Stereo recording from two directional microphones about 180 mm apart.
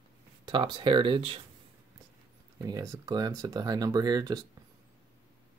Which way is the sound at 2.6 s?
20° right (ahead or behind).